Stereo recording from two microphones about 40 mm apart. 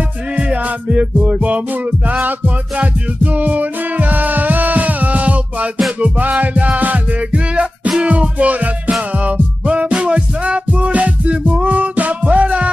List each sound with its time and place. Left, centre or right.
0.4 s music: right